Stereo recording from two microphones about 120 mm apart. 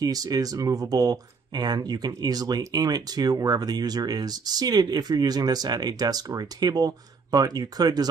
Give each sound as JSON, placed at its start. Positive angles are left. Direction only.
{"t": 0.0, "sound": "speech", "side_deg": -30}